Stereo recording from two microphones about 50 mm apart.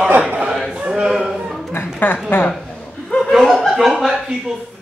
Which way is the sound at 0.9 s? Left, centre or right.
Centre.